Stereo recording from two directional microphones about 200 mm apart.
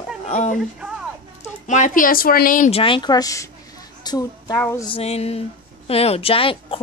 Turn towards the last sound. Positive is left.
turn(degrees=25)  # may be behind; listen again after turning